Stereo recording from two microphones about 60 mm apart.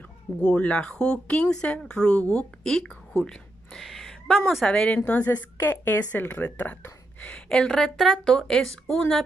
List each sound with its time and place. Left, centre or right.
0.4 s speech: centre
4.6 s a woman's voice: centre
7.4 s speech: centre